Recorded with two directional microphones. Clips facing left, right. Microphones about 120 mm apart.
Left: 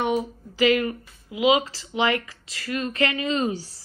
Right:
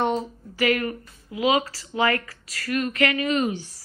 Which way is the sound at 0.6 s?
25° left (ahead or behind).